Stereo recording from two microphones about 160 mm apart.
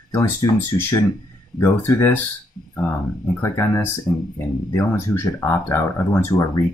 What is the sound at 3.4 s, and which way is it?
Speech, 20° left (ahead or behind).